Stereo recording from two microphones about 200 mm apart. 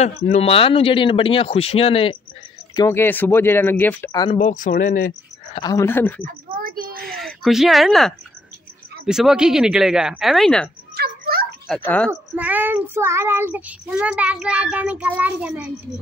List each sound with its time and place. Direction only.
0.0 s speech: 35° left (ahead or behind)
2.7 s speech: 15° left (ahead or behind)
4.4 s speech: 40° left (ahead or behind)
5.5 s speech: 20° left (ahead or behind)
6.2 s a child's voice: 45° right (ahead or behind)
7.2 s speech: centre (ahead or behind)
11.0 s music: 50° right (ahead or behind)
11.6 s speech: 5° left (ahead or behind)
12.1 s child singing: 10° right (ahead or behind)